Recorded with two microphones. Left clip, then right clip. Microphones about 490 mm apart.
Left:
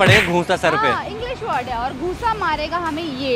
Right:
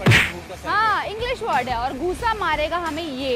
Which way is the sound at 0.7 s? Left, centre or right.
Right.